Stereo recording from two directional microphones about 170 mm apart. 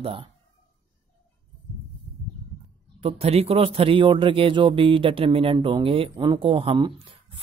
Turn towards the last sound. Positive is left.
turn(degrees=-30)  # may be behind; listen again after turning